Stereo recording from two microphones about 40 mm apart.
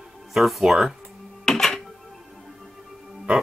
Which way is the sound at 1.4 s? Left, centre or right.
Centre.